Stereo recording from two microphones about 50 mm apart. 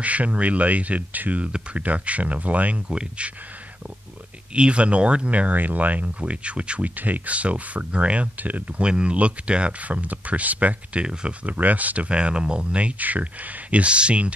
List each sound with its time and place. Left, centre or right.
0.0 s speech: right
2.9 s speech: centre
4.6 s speech: right
7.0 s speech: right
8.8 s speech: right
11.5 s speech: right